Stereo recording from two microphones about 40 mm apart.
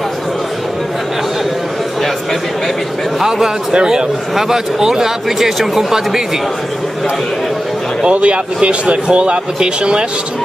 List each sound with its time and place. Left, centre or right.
3.2 s a man's voice: centre
8.0 s speech: right